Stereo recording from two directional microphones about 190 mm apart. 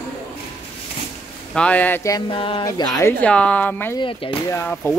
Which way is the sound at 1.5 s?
5° left (ahead or behind).